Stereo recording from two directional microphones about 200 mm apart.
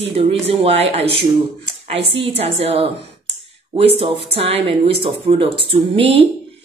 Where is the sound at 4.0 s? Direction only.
30° right (ahead or behind).